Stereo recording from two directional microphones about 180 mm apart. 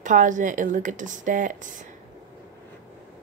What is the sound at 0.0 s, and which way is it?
Speech, 45° right (ahead or behind).